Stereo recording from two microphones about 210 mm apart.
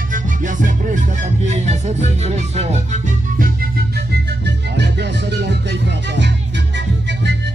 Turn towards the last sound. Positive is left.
turn(degrees=-55)  # may be behind; listen again after turning